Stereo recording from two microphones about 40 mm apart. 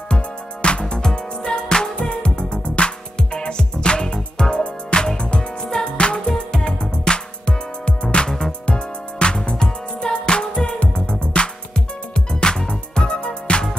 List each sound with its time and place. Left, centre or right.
0.1 s music: left